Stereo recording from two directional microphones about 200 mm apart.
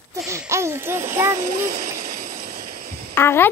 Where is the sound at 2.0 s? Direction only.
45° right (ahead or behind).